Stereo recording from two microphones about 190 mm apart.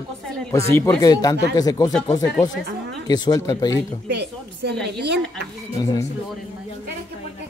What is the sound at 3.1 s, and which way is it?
Speech, 20° left (ahead or behind).